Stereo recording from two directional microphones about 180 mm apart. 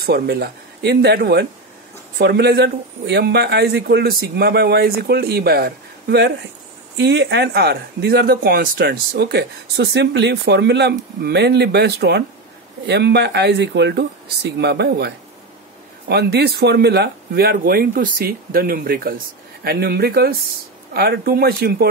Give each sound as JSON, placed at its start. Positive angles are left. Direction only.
{"t": 0.0, "sound": "speech", "side_deg": -60}